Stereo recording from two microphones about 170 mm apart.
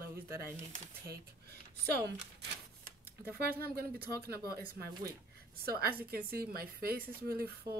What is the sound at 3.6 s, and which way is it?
A woman's voice, 65° right (ahead or behind).